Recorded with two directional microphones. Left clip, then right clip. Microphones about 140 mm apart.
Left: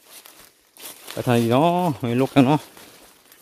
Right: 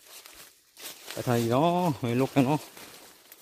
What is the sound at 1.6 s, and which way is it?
Speech, 30° left (ahead or behind).